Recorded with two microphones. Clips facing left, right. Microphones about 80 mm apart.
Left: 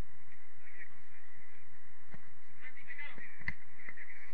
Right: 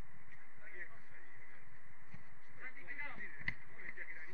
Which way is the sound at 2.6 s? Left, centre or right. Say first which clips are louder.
Right 1 dB; right.